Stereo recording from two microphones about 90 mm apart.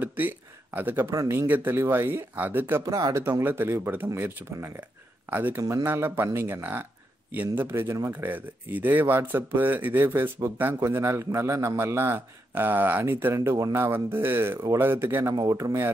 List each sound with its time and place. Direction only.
0.0 s speech: 20° right (ahead or behind)
2.8 s speech: 40° right (ahead or behind)
3.3 s speech: 25° right (ahead or behind)
5.6 s speech: 40° right (ahead or behind)
5.9 s speech: 25° right (ahead or behind)
8.1 s speech: 20° right (ahead or behind)
15.3 s speech: 40° right (ahead or behind)